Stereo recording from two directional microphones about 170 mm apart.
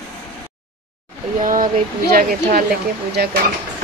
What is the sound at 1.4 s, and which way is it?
Speech, 50° right (ahead or behind).